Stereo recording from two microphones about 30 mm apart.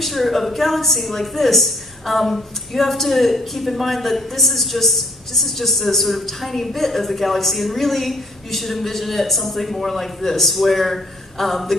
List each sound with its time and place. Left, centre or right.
0.0 s a woman's voice: centre